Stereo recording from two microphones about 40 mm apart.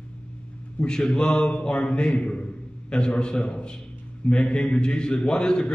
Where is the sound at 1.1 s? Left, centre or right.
Left.